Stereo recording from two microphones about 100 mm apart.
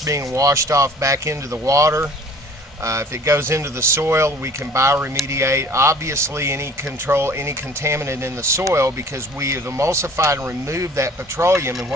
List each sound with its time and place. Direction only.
0.0 s a man's voice: 35° right (ahead or behind)